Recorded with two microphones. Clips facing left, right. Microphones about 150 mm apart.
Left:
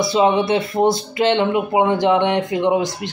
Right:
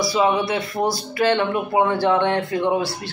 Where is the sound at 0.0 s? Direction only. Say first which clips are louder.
Left 3 dB; 25° left (ahead or behind).